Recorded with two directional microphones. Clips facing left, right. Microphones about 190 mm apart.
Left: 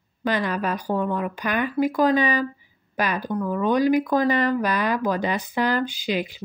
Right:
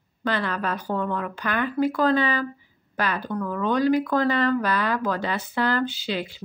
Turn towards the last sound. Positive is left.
turn(degrees=15)  # may be behind; listen again after turning